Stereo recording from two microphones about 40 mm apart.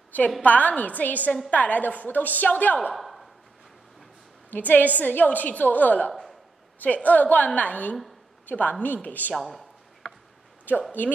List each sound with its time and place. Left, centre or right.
0.4 s a woman's voice: left
2.9 s a sound: centre
4.5 s a woman's voice: left
9.3 s a man's voice: centre
10.7 s speech: left